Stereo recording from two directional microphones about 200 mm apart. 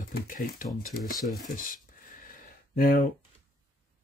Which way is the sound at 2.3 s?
45° left (ahead or behind).